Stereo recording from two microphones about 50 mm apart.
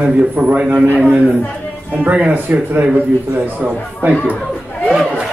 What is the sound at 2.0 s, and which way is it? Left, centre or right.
Speech, right.